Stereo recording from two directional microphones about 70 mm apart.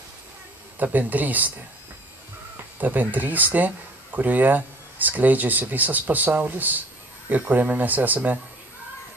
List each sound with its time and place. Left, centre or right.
0.7 s speech: right
2.8 s speech: right